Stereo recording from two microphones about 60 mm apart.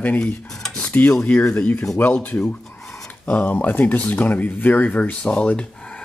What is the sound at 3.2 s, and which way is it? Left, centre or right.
Speech, left.